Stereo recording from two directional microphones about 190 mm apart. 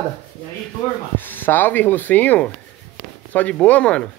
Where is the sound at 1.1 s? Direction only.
10° left (ahead or behind).